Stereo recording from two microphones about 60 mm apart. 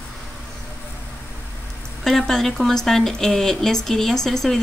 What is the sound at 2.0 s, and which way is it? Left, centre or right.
Speech, centre.